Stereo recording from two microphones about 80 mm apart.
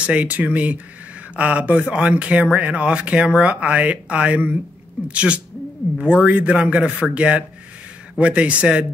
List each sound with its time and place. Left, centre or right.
0.0 s speech: centre